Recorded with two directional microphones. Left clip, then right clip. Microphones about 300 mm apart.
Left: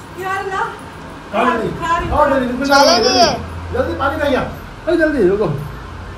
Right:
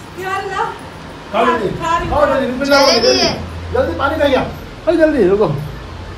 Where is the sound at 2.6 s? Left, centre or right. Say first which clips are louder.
Even; centre.